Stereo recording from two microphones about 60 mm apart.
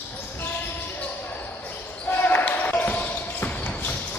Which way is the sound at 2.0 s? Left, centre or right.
Left.